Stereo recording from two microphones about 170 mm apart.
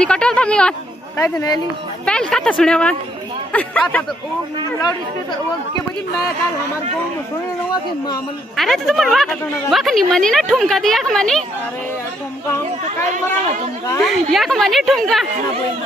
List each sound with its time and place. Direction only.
0.0 s a woman's voice: 5° left (ahead or behind)
1.1 s speech: 20° left (ahead or behind)
2.0 s a woman's voice: 5° left (ahead or behind)
8.5 s a woman's voice: centre (ahead or behind)
14.0 s a woman's voice: centre (ahead or behind)